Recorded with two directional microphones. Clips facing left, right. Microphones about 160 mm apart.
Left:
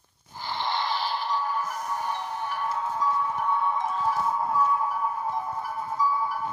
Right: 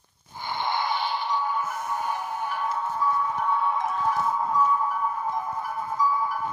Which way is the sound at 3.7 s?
10° right (ahead or behind).